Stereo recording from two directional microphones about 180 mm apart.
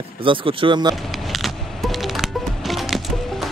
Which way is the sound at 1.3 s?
Centre (ahead or behind).